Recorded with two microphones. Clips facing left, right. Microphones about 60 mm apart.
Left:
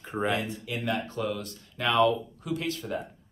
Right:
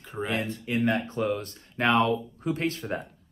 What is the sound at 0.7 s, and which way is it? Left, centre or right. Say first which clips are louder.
Speech: right 7 dB; right.